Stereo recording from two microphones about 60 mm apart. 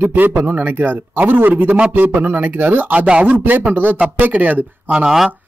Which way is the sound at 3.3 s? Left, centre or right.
Right.